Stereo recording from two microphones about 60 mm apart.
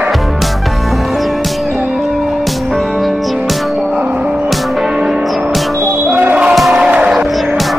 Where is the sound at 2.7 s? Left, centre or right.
Centre.